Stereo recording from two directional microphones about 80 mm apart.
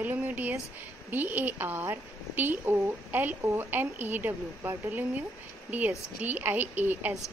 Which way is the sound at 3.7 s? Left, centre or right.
Right.